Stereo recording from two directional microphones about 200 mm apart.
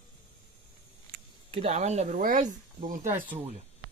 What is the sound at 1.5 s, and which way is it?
Speech, 30° right (ahead or behind).